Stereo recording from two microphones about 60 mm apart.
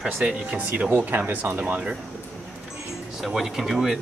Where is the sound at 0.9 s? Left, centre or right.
Right.